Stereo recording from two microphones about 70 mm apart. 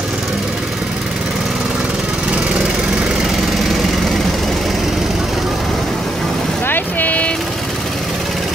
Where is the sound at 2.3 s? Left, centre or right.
Centre.